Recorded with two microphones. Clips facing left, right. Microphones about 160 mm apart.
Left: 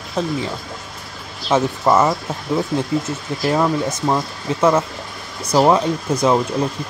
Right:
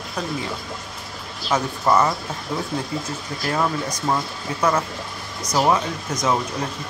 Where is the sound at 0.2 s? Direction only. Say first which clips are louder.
Left 7 dB; 25° left (ahead or behind).